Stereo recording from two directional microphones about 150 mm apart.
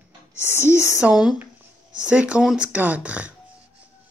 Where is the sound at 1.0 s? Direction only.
5° right (ahead or behind).